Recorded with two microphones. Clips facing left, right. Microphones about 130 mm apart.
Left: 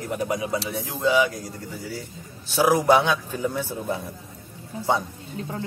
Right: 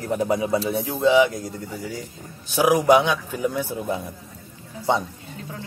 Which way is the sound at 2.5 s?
15° right (ahead or behind).